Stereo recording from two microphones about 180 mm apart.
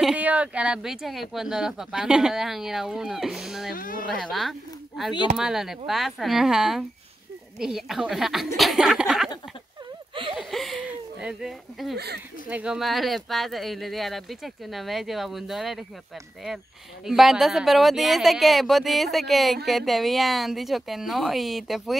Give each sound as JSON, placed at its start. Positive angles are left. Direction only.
{"t": 0.0, "sound": "speech", "side_deg": -5}
{"t": 3.7, "sound": "speech", "side_deg": 50}
{"t": 4.1, "sound": "speech", "side_deg": 0}
{"t": 10.3, "sound": "a sound", "side_deg": 0}
{"t": 12.4, "sound": "speech", "side_deg": -5}
{"t": 17.0, "sound": "speech", "side_deg": 0}